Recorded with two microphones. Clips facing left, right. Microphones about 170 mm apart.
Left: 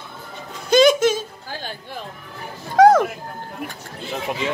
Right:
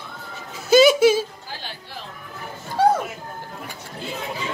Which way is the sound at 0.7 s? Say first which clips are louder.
Right 1 dB; 5° right (ahead or behind).